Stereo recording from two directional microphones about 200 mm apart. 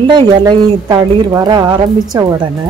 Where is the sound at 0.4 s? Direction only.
20° right (ahead or behind).